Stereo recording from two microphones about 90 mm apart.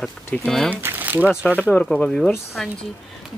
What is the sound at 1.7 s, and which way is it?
Speech, 5° left (ahead or behind).